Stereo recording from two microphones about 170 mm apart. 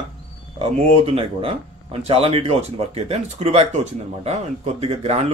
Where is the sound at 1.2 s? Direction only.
35° right (ahead or behind).